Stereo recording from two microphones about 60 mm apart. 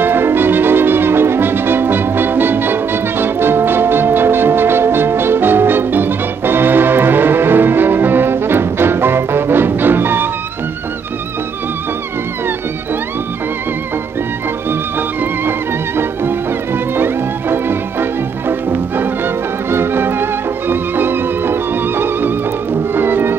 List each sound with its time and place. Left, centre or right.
0.0 s brass instrument: right
14.7 s music: right